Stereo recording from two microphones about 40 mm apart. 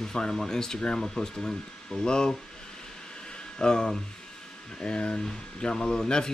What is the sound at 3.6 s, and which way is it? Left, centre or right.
Speech, left.